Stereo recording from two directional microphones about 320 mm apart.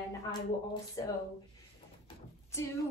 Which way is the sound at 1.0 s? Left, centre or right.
Centre.